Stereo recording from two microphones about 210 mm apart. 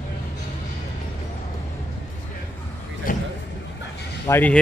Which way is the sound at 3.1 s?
40° left (ahead or behind).